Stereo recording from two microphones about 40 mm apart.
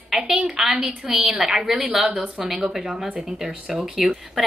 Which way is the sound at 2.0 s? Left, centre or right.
Right.